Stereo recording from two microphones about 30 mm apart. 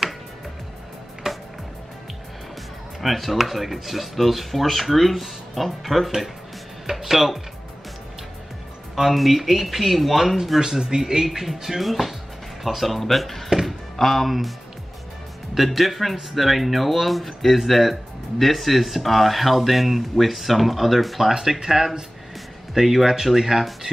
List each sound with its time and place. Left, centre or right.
1.3 s music: right
3.0 s speech: centre
8.9 s speech: centre
10.6 s speech: right
11.2 s speech: centre
11.8 s speech: centre
13.7 s music: centre
15.5 s speech: centre
21.3 s speech: centre